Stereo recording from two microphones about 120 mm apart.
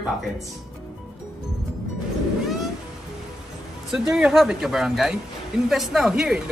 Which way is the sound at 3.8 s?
5° right (ahead or behind).